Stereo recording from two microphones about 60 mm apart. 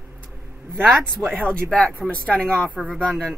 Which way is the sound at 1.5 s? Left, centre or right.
Centre.